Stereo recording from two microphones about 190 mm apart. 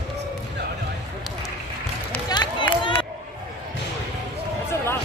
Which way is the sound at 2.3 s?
25° left (ahead or behind).